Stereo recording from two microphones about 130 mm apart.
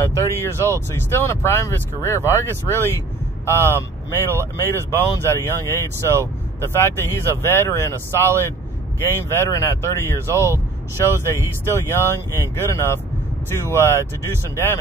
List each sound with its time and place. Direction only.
0.0 s speech: 20° left (ahead or behind)